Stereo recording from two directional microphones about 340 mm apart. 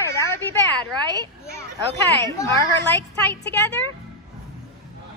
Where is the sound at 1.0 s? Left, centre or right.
Centre.